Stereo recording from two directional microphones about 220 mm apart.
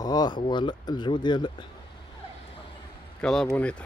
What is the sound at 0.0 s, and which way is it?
Speech, 15° left (ahead or behind).